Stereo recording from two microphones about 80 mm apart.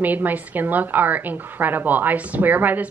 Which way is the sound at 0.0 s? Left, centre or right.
Right.